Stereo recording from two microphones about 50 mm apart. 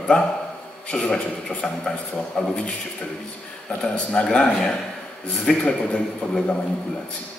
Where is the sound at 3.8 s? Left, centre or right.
Left.